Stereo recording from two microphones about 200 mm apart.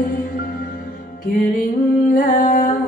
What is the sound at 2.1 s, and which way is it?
Music, 40° left (ahead or behind).